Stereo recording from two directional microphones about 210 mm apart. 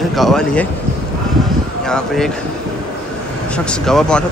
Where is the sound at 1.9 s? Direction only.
5° left (ahead or behind).